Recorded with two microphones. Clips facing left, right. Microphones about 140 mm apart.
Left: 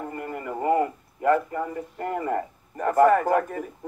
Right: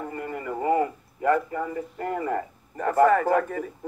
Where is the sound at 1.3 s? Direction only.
10° left (ahead or behind).